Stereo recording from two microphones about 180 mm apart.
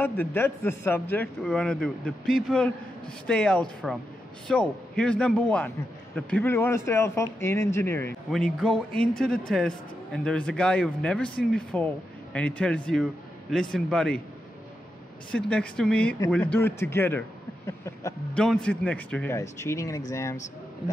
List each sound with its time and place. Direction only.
0.0 s a man's voice: 10° left (ahead or behind)
8.3 s a man's voice: centre (ahead or behind)
15.3 s a man's voice: 5° left (ahead or behind)
17.6 s a sound: 15° left (ahead or behind)
18.4 s a man's voice: 5° left (ahead or behind)